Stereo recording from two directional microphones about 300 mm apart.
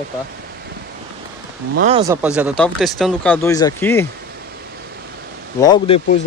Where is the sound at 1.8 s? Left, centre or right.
Right.